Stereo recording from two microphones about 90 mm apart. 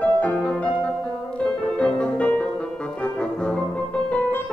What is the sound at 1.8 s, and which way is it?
Music, 10° left (ahead or behind).